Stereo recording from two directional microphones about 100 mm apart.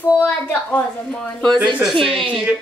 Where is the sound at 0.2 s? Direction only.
15° left (ahead or behind).